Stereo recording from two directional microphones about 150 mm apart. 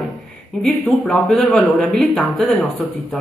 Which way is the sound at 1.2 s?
5° left (ahead or behind).